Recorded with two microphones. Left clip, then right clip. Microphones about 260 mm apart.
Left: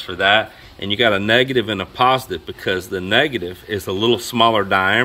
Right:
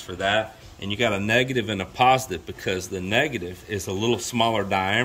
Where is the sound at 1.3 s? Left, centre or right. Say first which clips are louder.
Left 6 dB; centre.